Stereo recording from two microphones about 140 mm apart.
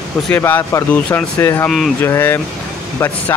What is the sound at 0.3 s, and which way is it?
Speech, 15° left (ahead or behind).